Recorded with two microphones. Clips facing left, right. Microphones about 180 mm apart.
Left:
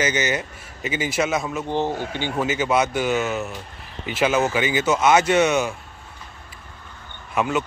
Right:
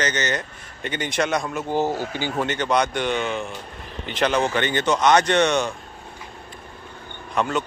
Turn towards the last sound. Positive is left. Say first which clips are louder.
# left 1 dB
turn(degrees=5)  # may be behind; listen again after turning